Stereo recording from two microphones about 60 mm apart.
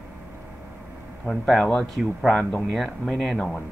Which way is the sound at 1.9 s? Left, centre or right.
Centre.